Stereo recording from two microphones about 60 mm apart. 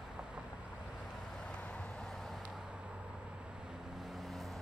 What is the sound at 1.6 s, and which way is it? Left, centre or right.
Vehicle, centre.